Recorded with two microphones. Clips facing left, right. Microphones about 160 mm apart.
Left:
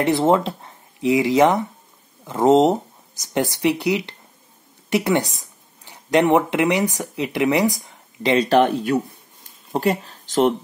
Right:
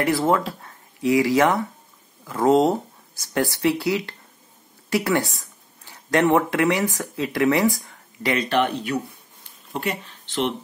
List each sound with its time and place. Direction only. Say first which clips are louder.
0.0 s speech: left 3 dB; 25° left (ahead or behind)
8.5 s speech: left 5 dB; 40° left (ahead or behind)